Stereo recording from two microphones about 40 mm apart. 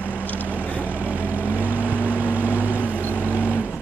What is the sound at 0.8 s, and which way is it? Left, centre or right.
Vehicle, right.